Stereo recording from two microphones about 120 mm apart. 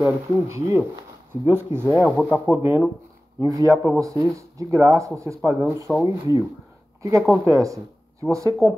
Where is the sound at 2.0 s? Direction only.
5° left (ahead or behind).